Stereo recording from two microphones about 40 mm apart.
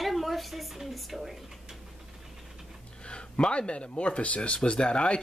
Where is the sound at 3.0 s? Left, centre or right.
Left.